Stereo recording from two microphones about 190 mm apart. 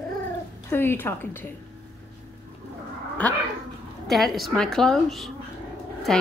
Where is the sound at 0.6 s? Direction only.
10° left (ahead or behind).